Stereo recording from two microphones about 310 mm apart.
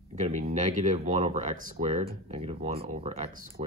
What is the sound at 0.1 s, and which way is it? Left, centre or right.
Speech, right.